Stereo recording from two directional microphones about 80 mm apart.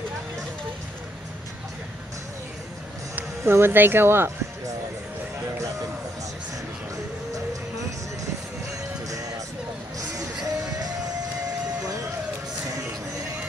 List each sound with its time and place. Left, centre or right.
3.4 s speech: right
9.9 s music: right